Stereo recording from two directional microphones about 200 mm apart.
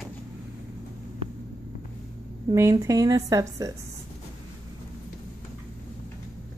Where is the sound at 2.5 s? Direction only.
15° right (ahead or behind).